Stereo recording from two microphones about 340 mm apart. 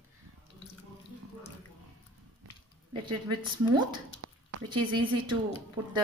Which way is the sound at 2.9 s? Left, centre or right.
Centre.